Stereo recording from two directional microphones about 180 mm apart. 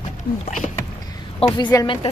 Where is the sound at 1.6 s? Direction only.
20° left (ahead or behind).